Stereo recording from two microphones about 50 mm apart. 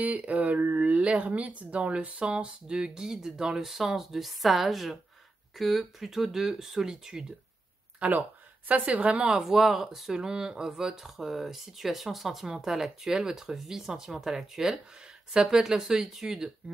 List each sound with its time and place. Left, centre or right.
0.0 s speech: right; by 7.3 s centre
8.0 s speech: right